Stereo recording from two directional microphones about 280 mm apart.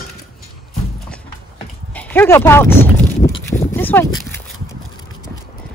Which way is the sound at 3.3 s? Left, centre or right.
Left.